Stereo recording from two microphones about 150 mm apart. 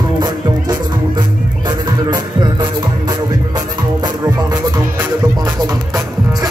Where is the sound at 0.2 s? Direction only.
30° right (ahead or behind).